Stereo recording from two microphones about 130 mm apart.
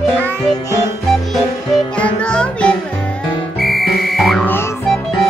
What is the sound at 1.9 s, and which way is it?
Music, 5° left (ahead or behind).